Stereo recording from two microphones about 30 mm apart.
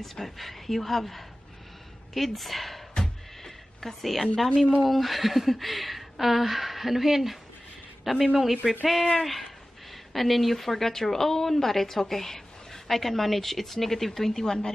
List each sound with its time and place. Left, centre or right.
0.0 s speech: centre
3.0 s music: centre
4.8 s speech: centre
14.3 s speech: left